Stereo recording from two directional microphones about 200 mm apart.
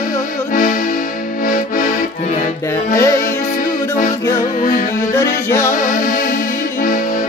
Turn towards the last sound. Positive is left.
turn(degrees=15)  # may be behind; listen again after turning